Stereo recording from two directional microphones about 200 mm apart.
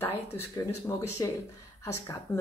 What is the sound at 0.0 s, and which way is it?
Speech, 10° left (ahead or behind).